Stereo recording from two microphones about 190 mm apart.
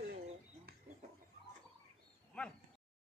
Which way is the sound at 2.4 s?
5° left (ahead or behind).